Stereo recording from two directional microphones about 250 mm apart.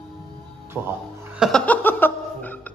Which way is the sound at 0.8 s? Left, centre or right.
Centre.